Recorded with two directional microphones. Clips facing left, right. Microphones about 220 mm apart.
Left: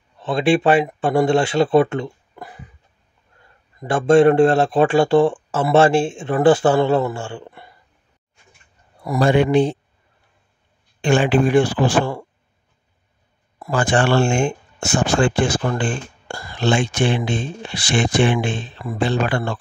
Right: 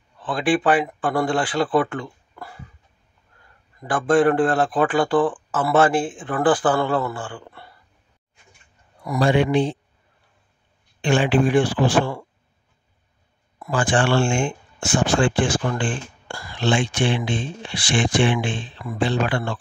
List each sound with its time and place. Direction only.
0.2 s speech: 25° left (ahead or behind)
3.8 s speech: 25° left (ahead or behind)
9.0 s speech: 35° left (ahead or behind)
11.0 s speech: 45° left (ahead or behind)
13.6 s speech: 40° left (ahead or behind)